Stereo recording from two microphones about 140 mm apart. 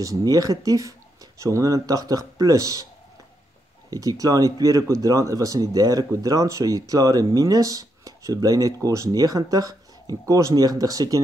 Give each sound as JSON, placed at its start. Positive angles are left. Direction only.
{"t": 0.0, "sound": "speech", "side_deg": -25}
{"t": 3.9, "sound": "speech", "side_deg": -25}